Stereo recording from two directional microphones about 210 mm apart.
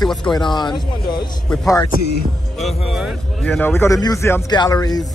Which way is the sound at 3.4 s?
10° left (ahead or behind).